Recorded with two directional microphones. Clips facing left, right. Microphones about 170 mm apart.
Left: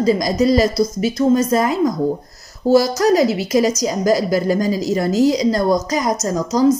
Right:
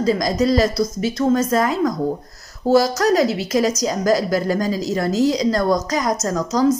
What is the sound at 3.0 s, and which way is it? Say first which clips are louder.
A woman's voice: left 2 dB; 10° left (ahead or behind).